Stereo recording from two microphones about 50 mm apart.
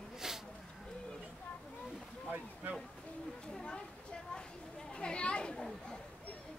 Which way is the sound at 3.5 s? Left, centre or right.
Centre.